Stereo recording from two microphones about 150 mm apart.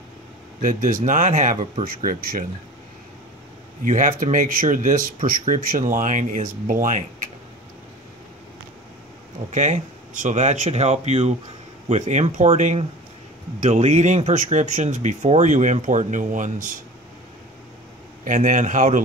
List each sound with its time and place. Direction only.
0.6 s speech: 65° right (ahead or behind)
3.8 s speech: 60° right (ahead or behind)
9.5 s speech: 55° right (ahead or behind)
18.2 s speech: 55° right (ahead or behind)